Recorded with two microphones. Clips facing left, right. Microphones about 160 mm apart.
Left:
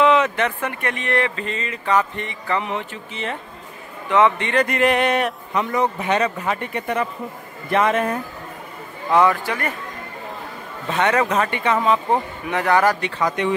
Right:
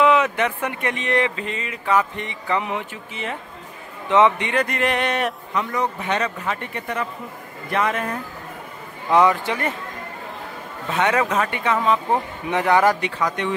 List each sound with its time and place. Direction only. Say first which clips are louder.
0.0 s speech: left 1 dB; 5° right (ahead or behind)
4.6 s speech: left 4 dB; 5° left (ahead or behind)
5.5 s speech: left 5 dB; 25° left (ahead or behind)
6.0 s speech: left 3 dB; 10° left (ahead or behind)
6.5 s speech: left 4 dB; 20° left (ahead or behind)
9.1 s speech: even; 15° right (ahead or behind)
11.0 s speech: left 1 dB; 5° right (ahead or behind)
12.4 s speech: right 1 dB; 20° right (ahead or behind)
13.4 s speech: left 6 dB; 5° left (ahead or behind)